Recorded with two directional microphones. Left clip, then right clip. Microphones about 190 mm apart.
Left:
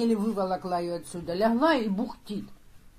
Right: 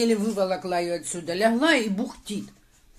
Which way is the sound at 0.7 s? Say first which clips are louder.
Right 4 dB; 10° left (ahead or behind).